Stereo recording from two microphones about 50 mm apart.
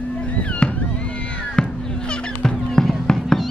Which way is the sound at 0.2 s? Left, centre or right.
Left.